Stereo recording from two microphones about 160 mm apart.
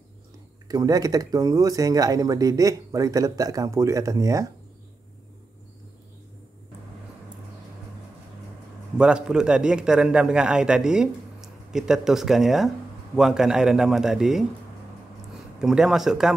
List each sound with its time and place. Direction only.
0.7 s speech: 20° right (ahead or behind)
8.9 s a man's voice: 5° right (ahead or behind)
15.6 s a man's voice: 5° right (ahead or behind)